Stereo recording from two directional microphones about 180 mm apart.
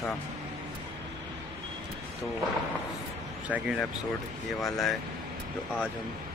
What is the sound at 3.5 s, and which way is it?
Speech, 5° right (ahead or behind).